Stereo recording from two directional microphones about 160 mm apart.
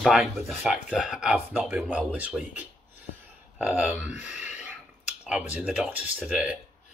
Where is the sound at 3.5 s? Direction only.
10° right (ahead or behind).